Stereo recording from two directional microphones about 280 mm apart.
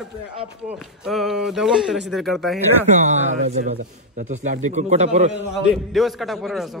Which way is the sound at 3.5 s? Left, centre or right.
Right.